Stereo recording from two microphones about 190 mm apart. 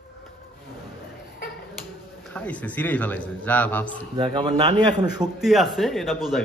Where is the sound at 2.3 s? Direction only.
5° left (ahead or behind).